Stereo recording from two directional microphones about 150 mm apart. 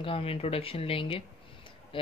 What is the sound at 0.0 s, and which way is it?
Speech, 40° left (ahead or behind).